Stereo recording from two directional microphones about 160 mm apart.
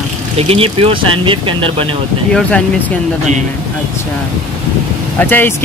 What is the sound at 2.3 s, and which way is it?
Speech, 10° left (ahead or behind).